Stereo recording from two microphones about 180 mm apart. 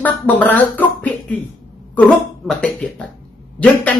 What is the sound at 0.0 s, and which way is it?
Speech, 10° left (ahead or behind).